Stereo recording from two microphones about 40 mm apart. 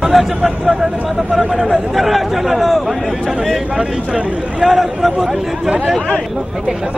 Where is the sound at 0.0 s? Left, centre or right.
Centre.